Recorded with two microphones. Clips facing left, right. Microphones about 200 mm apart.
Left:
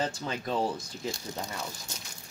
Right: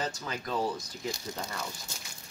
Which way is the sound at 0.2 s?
25° left (ahead or behind).